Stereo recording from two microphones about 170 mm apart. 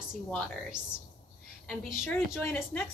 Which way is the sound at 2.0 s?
15° left (ahead or behind).